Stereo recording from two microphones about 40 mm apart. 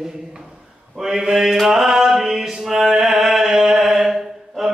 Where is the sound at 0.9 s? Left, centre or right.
Centre.